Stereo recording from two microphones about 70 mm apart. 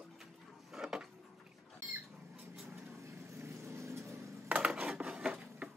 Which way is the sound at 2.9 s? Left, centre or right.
Right.